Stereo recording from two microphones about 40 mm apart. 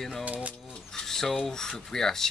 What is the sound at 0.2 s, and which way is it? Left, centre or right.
Speech, right.